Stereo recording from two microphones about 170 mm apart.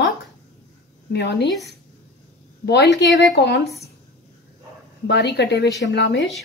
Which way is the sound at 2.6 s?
85° left.